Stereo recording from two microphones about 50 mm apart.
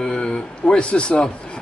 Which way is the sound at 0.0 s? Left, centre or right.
Centre.